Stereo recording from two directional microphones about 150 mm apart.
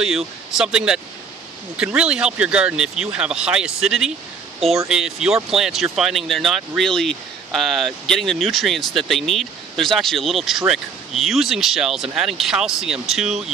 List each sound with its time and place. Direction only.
0.0 s speech: 5° right (ahead or behind)